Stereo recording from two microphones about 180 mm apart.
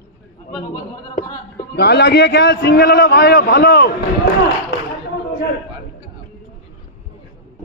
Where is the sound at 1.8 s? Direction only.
65° left (ahead or behind).